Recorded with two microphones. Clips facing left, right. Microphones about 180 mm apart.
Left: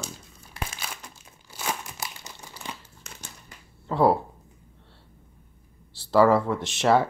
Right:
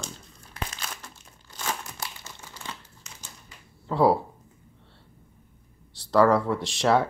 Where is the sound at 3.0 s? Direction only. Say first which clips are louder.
Left 4 dB; 50° left (ahead or behind).